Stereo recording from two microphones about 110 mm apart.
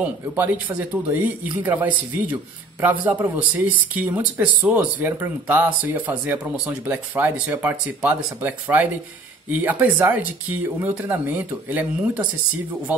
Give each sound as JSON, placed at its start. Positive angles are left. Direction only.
{"t": 0.0, "sound": "speech", "side_deg": -15}